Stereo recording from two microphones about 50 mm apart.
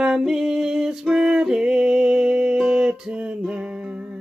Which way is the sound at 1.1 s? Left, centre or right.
Centre.